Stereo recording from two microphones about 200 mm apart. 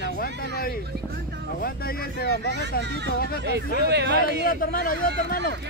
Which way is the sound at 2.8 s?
55° right (ahead or behind).